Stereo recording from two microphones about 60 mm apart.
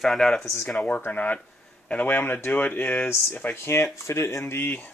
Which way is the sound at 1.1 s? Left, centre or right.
Left.